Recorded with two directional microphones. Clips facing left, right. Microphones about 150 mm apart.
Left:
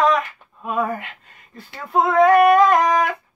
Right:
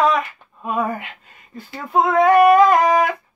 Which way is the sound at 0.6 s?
Centre (ahead or behind).